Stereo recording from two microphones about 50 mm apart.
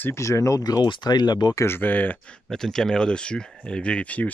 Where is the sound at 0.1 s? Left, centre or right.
Left.